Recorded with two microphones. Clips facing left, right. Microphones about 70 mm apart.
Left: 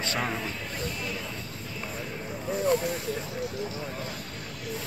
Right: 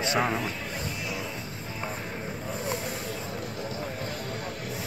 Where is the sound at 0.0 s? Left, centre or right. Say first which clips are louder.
Right 4 dB; centre.